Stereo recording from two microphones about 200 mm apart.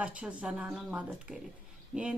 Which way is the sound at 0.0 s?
5° right (ahead or behind).